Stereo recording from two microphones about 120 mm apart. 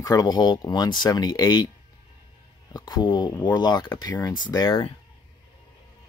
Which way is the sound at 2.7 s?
35° left (ahead or behind).